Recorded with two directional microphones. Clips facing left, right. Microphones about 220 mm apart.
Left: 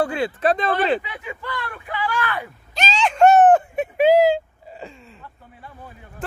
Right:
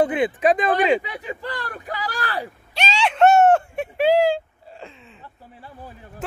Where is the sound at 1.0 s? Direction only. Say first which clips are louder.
Right 2 dB; 35° right (ahead or behind).